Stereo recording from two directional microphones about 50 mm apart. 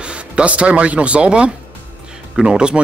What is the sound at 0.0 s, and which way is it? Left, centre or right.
Speech, right.